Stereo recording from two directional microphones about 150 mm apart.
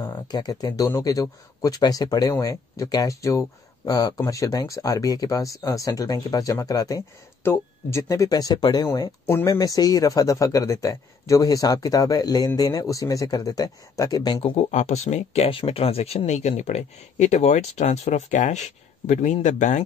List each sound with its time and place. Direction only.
0.0 s a man's voice: 25° left (ahead or behind)
14.3 s speech: 40° left (ahead or behind); by 19.8 s 55° left (ahead or behind)